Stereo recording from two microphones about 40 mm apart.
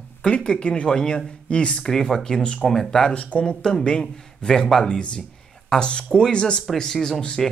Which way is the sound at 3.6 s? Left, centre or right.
Centre.